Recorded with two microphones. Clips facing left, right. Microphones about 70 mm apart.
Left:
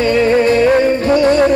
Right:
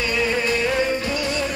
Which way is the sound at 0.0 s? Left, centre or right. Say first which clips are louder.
Left 11 dB; left.